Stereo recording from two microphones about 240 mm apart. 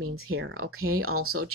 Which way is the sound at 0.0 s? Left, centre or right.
Right.